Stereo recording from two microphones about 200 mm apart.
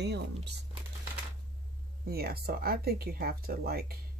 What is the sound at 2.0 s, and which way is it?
Speech, 50° right (ahead or behind).